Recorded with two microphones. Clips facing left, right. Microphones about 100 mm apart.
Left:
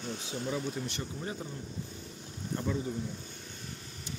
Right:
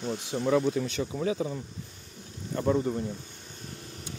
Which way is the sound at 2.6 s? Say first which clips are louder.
Right 9 dB; 60° right (ahead or behind).